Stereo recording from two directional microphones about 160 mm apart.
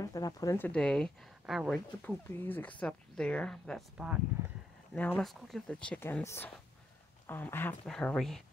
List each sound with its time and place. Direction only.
0.0 s speech: 25° left (ahead or behind)
0.6 s speech: 5° left (ahead or behind)
2.0 s speech: 10° left (ahead or behind)
4.9 s speech: 10° left (ahead or behind)